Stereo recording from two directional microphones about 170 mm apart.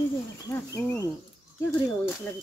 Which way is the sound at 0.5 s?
15° left (ahead or behind).